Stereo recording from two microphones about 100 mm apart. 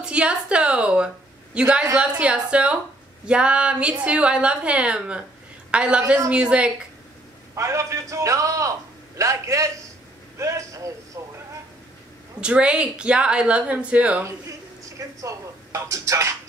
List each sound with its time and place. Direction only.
0.0 s a woman's voice: 10° right (ahead or behind)
7.5 s a man's voice: 30° right (ahead or behind)
11.2 s a sound: 30° right (ahead or behind)
12.4 s speech: 10° right (ahead or behind)
14.9 s speech: 35° right (ahead or behind)